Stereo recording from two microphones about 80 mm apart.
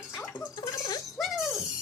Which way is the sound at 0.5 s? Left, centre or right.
Left.